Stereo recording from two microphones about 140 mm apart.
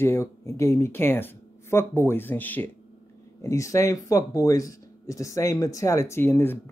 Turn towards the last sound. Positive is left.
turn(degrees=15)  # may be behind; listen again after turning